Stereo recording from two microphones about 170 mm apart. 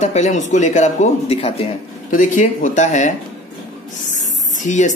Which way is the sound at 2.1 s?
50° left (ahead or behind).